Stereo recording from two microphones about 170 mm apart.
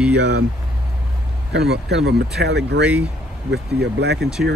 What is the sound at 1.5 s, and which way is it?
Speech, 80° right.